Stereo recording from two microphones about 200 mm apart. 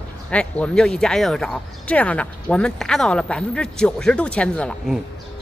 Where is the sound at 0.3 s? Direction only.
5° left (ahead or behind).